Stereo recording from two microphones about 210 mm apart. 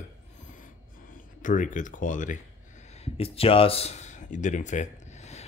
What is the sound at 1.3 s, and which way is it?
Speech, 40° left (ahead or behind).